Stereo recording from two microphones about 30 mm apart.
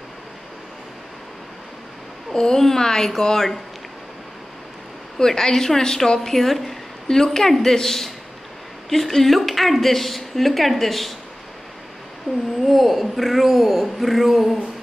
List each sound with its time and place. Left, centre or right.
2.3 s a woman's voice: centre
5.2 s a woman's voice: centre
6.3 s a woman's voice: centre
12.6 s a woman's voice: centre